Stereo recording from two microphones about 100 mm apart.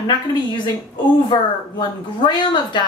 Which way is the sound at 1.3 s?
50° left (ahead or behind).